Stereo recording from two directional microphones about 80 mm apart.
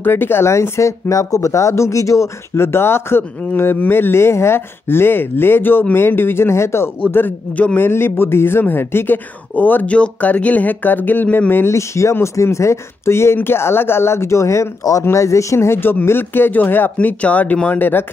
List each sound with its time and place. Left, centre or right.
0.0 s a man's voice: left
11.7 s a man's voice: left